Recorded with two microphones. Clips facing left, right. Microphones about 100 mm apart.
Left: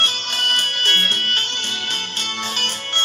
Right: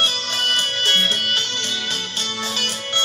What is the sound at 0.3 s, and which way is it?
Music, 50° left (ahead or behind).